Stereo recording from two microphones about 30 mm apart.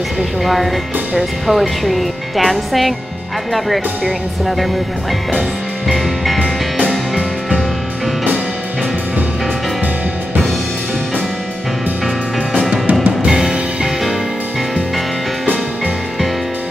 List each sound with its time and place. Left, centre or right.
0.4 s speech: centre
13.3 s music: right